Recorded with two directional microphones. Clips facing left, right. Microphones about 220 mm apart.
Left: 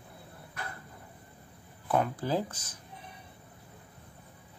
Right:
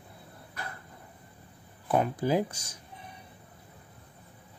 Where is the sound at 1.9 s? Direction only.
15° right (ahead or behind).